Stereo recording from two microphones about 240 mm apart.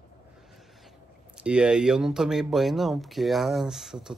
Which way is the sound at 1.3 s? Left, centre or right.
Centre.